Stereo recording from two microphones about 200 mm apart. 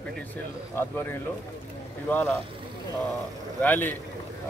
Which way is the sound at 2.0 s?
10° left (ahead or behind).